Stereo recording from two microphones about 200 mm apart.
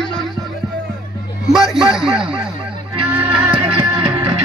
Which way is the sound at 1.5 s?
Centre (ahead or behind).